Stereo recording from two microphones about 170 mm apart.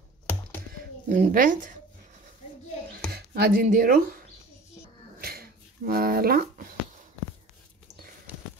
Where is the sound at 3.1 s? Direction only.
65° right (ahead or behind).